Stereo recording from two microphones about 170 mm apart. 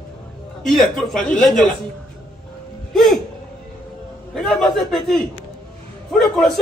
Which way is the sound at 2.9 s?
Centre (ahead or behind).